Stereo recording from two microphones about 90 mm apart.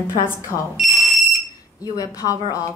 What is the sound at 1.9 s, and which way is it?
Speech, 40° left (ahead or behind).